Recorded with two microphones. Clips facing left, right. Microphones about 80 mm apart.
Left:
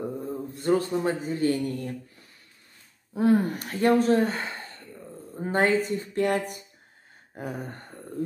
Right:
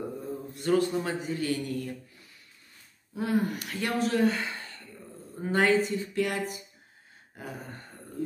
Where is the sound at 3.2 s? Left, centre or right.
Left.